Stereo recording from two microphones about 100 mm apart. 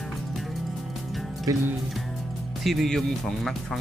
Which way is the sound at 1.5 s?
35° right (ahead or behind).